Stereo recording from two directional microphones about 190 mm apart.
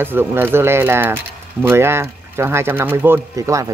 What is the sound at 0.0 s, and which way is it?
Speech, 10° right (ahead or behind).